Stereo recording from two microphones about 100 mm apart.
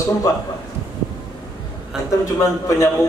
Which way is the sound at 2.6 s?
35° left (ahead or behind).